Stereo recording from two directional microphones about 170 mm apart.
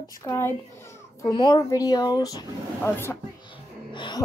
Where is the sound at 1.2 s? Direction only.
25° left (ahead or behind).